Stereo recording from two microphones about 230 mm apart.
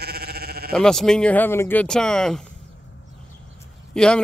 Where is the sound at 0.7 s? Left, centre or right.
Centre.